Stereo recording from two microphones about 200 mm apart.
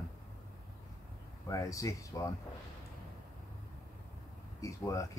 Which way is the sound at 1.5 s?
15° left (ahead or behind).